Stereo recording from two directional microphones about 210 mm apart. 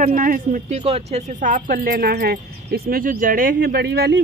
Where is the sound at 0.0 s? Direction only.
40° right (ahead or behind).